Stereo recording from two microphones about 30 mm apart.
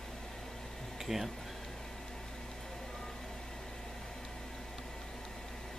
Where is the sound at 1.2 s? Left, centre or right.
Centre.